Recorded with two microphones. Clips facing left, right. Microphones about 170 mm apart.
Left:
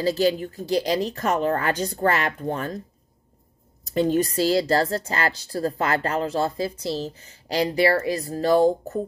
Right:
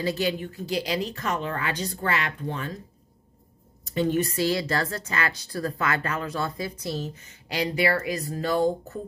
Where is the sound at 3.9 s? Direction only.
35° left (ahead or behind).